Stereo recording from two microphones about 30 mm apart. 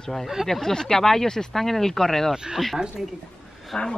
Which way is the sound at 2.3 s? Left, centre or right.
Right.